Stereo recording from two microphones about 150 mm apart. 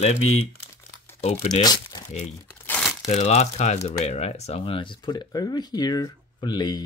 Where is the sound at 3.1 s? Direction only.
45° left (ahead or behind); by 6.8 s 25° left (ahead or behind).